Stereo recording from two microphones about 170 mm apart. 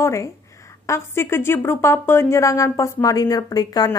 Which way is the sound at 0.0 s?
15° left (ahead or behind).